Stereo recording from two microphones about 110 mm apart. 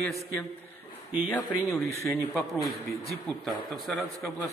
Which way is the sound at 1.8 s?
25° left (ahead or behind).